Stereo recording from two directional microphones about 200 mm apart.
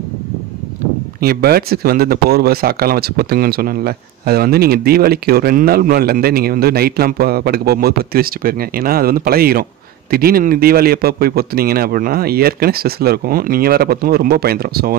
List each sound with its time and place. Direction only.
1.2 s speech: 50° right (ahead or behind)